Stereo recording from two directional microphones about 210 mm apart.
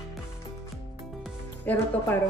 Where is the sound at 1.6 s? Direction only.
10° left (ahead or behind).